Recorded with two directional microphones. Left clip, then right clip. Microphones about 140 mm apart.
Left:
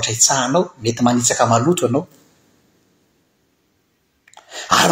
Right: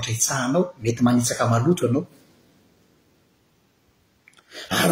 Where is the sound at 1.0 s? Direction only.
15° right (ahead or behind).